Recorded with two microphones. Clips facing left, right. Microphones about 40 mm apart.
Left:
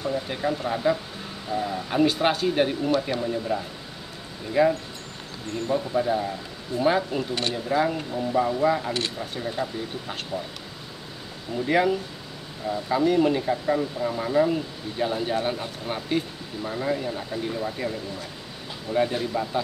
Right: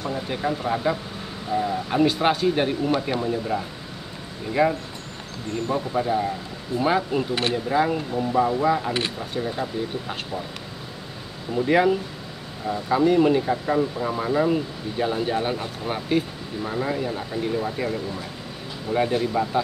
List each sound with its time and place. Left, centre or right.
0.1 s speech: centre
2.9 s speech: centre
7.2 s speech: centre
11.5 s speech: centre